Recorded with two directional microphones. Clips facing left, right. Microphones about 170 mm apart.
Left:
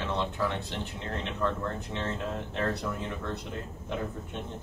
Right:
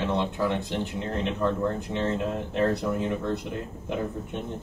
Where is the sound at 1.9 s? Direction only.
15° right (ahead or behind).